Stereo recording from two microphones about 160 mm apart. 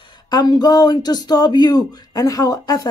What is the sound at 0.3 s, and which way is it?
Speech, 25° left (ahead or behind).